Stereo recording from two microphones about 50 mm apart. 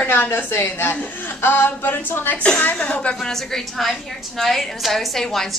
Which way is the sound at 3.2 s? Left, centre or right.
Centre.